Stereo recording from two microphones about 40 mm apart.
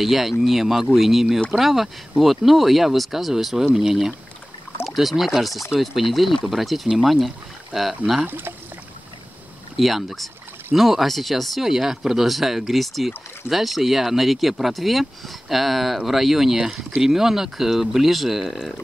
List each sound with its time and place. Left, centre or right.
0.0 s speech: centre
8.3 s speech: right
9.8 s speech: centre
11.6 s speech: centre